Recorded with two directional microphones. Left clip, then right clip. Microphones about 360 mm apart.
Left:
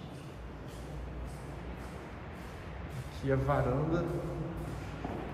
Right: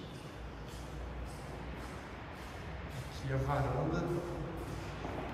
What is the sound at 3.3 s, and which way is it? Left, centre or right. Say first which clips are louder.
Speech: left 5 dB; centre.